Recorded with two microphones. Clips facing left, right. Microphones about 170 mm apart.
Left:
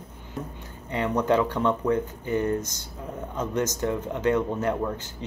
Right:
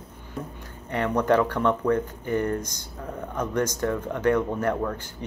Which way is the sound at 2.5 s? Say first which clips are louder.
Left 1 dB; 15° right (ahead or behind).